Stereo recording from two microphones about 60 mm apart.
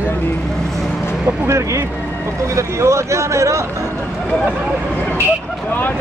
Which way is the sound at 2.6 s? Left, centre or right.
Right.